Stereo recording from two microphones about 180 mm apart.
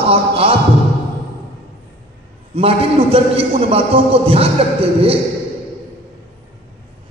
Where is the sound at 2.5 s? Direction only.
30° right (ahead or behind).